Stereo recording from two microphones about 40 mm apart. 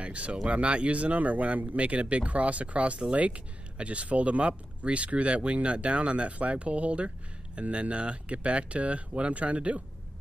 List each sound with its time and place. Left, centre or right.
0.0 s speech: right